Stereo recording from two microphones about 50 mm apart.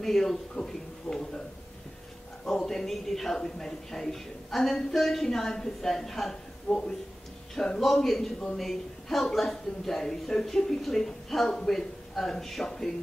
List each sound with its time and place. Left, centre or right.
0.0 s a man's voice: centre
2.4 s a man's voice: centre